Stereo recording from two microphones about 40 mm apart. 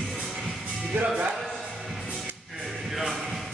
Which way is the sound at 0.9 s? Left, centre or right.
Right.